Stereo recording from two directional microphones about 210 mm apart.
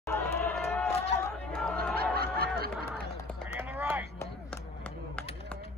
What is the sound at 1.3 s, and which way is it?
Chatter, 5° left (ahead or behind).